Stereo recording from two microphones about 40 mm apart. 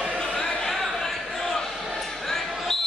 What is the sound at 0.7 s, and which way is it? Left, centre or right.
Basketball bounce, centre.